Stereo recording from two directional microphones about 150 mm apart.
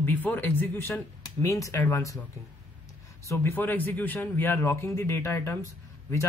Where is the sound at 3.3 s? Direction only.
15° left (ahead or behind).